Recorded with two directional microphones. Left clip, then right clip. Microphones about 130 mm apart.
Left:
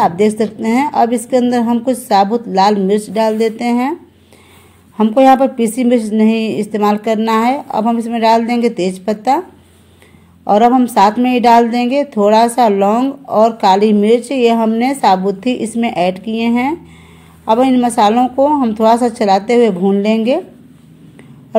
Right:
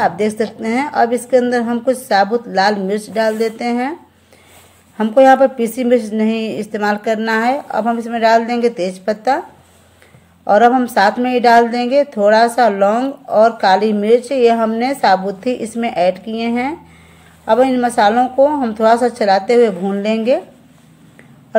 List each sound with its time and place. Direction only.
0.0 s a woman's voice: 30° left (ahead or behind)
4.9 s a woman's voice: 30° left (ahead or behind)
10.4 s a woman's voice: 30° left (ahead or behind)